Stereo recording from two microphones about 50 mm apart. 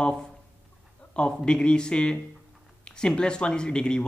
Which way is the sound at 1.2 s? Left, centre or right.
Centre.